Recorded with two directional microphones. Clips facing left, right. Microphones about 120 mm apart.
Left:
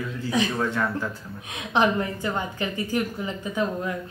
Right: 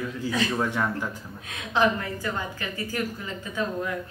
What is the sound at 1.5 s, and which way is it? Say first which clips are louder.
A woman's voice: left 1 dB; 20° left (ahead or behind).